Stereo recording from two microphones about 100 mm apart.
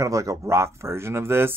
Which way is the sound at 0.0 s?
35° right (ahead or behind).